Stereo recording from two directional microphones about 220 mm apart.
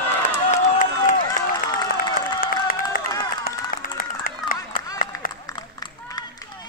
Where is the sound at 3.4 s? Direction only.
40° left (ahead or behind).